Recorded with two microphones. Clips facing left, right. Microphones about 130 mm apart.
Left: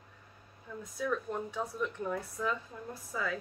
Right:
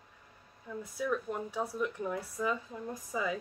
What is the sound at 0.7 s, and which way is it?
Speech, 10° right (ahead or behind).